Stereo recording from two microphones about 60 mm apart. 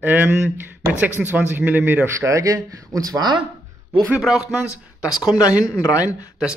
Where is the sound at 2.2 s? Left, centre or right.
Right.